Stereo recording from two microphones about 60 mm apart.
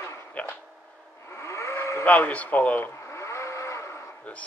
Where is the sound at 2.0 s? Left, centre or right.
Left.